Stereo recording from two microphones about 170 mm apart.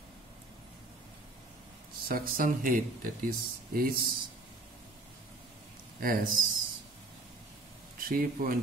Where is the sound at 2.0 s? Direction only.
60° right (ahead or behind).